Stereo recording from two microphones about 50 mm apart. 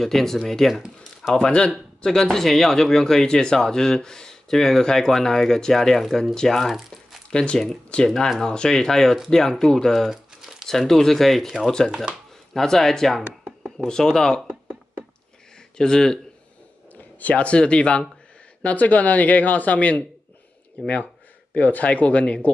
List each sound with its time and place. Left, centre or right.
0.0 s speech: centre
1.3 s speech: centre
7.2 s a man's voice: centre
9.9 s crumpling: centre
10.7 s speech: centre
11.9 s speech: centre
12.5 s speech: centre
15.8 s speech: centre
16.9 s a man's voice: left